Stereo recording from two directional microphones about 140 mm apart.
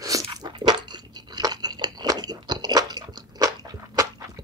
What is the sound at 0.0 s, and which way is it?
Crunch, 25° right (ahead or behind).